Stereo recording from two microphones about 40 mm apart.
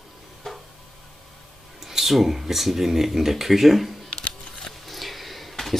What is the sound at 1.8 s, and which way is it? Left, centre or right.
Speech, centre.